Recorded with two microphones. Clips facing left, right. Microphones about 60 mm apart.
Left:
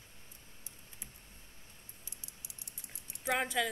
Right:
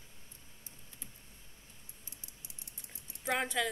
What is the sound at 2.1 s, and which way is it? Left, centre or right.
Typing, right.